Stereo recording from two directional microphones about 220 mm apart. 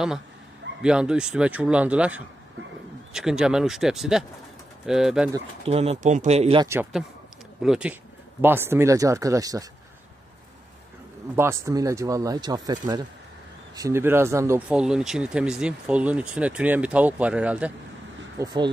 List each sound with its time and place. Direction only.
0.8 s speech: 5° right (ahead or behind)
5.7 s speech: 30° right (ahead or behind)
6.7 s speech: 5° right (ahead or behind)
11.3 s speech: 10° right (ahead or behind)
18.4 s speech: 20° right (ahead or behind)